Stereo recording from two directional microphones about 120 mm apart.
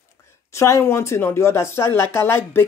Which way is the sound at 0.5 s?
25° left (ahead or behind).